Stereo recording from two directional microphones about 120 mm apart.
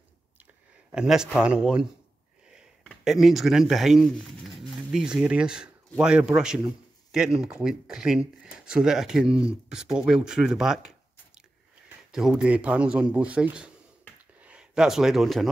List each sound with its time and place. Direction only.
0.9 s speech: 5° right (ahead or behind)
12.1 s speech: 5° right (ahead or behind)